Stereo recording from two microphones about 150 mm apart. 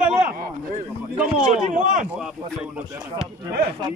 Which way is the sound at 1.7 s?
60° right (ahead or behind).